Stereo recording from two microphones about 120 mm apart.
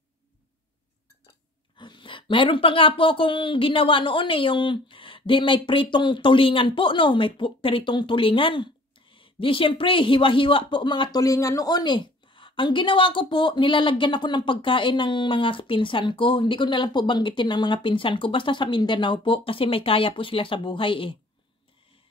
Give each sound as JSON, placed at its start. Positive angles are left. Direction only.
{"t": 1.8, "sound": "speech", "side_deg": 40}